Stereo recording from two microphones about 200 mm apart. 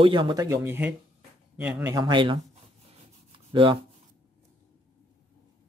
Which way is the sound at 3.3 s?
25° right (ahead or behind).